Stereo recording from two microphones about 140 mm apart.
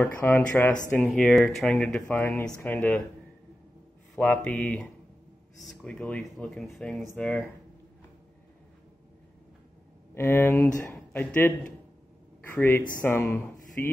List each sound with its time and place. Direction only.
0.0 s speech: 15° left (ahead or behind)
4.1 s speech: 10° left (ahead or behind)
10.1 s speech: 15° left (ahead or behind)